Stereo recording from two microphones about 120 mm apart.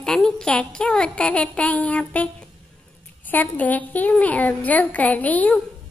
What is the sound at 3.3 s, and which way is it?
A woman's voice, 15° left (ahead or behind).